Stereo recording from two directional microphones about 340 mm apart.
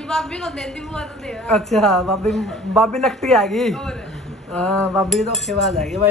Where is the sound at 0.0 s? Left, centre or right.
Centre.